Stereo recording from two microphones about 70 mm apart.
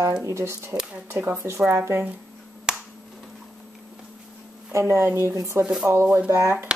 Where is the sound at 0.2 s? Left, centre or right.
Right.